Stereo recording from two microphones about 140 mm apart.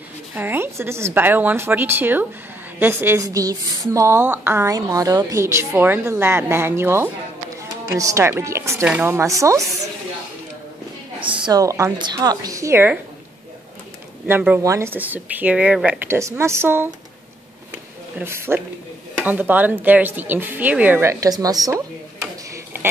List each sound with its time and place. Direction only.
0.3 s a woman's voice: 15° right (ahead or behind)
11.1 s a woman's voice: 35° right (ahead or behind); by 13.0 s 15° right (ahead or behind)
14.2 s a woman's voice: 15° right (ahead or behind)
16.2 s a woman's voice: 20° right (ahead or behind)
18.2 s a woman's voice: 15° right (ahead or behind)
22.5 s a sound: 15° right (ahead or behind)